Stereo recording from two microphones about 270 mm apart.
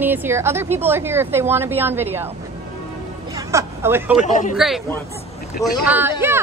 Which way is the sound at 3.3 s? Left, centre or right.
Centre.